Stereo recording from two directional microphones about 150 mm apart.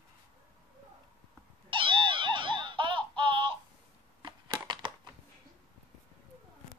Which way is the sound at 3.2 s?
35° right (ahead or behind).